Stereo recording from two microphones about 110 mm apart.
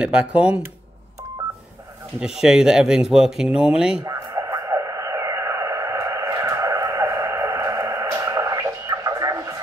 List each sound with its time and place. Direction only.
0.0 s speech: 10° right (ahead or behind)
2.1 s speech: 5° right (ahead or behind)
4.0 s radio: 30° right (ahead or behind)